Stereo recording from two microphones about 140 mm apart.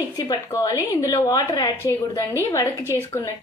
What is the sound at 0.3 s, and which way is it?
A woman's voice, 25° left (ahead or behind).